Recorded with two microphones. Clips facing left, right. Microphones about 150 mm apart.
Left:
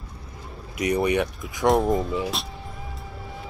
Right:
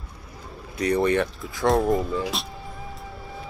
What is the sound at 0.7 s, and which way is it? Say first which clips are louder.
Speech: right 1 dB; 15° left (ahead or behind).